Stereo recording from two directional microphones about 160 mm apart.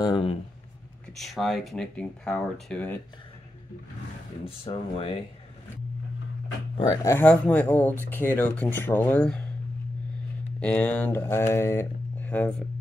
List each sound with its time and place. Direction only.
0.0 s speech: 35° left (ahead or behind)
1.1 s speech: centre (ahead or behind)
4.5 s speech: 35° left (ahead or behind)
6.8 s speech: 20° left (ahead or behind)
10.6 s speech: 10° left (ahead or behind)